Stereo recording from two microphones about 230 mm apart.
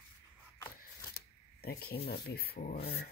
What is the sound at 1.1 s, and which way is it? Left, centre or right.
Speech, left.